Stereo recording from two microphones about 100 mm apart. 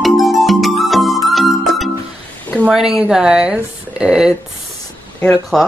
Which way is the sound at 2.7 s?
5° right (ahead or behind).